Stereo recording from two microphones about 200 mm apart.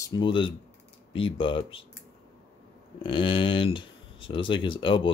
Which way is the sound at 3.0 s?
25° left (ahead or behind).